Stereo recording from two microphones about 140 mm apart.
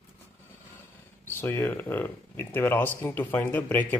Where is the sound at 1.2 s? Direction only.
15° left (ahead or behind).